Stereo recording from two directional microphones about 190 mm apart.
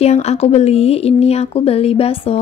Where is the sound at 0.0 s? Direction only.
35° left (ahead or behind).